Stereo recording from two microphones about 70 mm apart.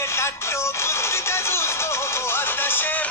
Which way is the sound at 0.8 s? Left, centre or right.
Left.